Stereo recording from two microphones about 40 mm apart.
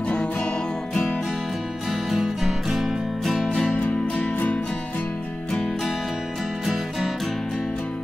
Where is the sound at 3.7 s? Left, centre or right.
Left.